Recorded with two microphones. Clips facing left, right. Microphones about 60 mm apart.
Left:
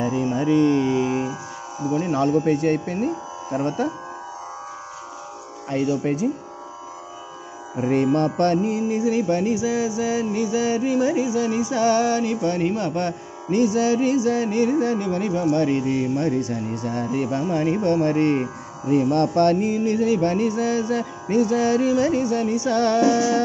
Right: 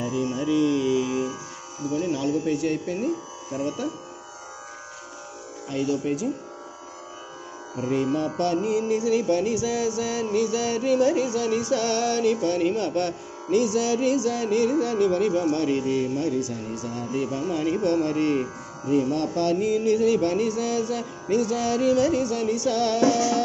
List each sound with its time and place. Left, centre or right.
0.0 s music: left
1.8 s speech: left
5.7 s speech: left
7.9 s speech: left
8.6 s music: left
15.5 s speech: left
19.6 s speech: left